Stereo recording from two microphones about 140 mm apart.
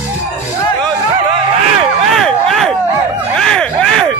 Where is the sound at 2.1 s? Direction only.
Centre (ahead or behind).